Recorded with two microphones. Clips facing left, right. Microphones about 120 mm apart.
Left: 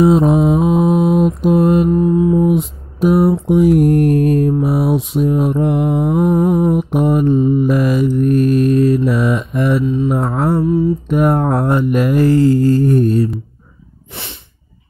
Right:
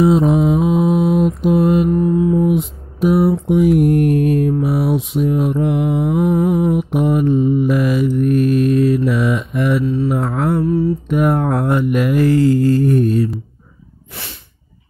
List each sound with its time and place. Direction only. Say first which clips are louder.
0.0 s mantra: left 2 dB; 45° left (ahead or behind)
2.0 s humming: left 2 dB; 25° left (ahead or behind)
2.4 s mantra: left 2 dB; 40° left (ahead or behind)
10.6 s mantra: left 2 dB; 15° left (ahead or behind)
11.1 s mantra: left 2 dB; 40° left (ahead or behind)